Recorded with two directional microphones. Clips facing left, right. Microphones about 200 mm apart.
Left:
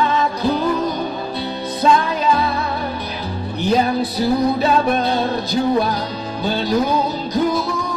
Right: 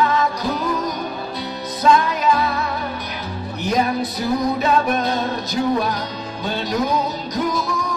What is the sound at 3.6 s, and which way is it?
Music, 30° left (ahead or behind).